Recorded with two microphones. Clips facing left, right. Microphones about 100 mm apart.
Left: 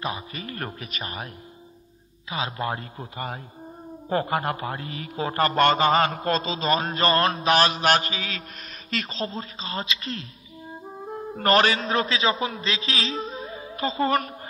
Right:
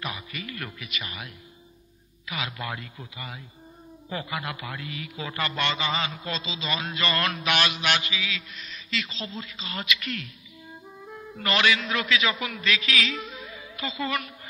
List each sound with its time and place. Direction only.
0.0 s a man's voice: 35° left (ahead or behind)